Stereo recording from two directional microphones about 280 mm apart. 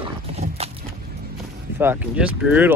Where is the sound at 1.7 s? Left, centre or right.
Centre.